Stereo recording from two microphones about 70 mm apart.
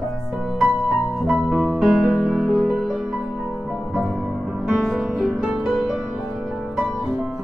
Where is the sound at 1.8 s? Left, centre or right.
Centre.